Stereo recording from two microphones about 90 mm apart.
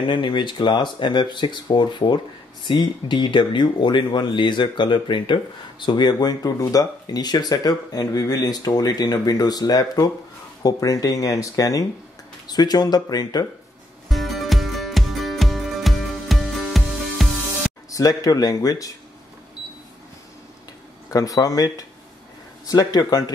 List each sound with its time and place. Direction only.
0.0 s speech: 65° left (ahead or behind); by 13.5 s 45° left (ahead or behind)
14.0 s music: centre (ahead or behind)
17.9 s speech: 45° left (ahead or behind)
21.1 s speech: 40° left (ahead or behind)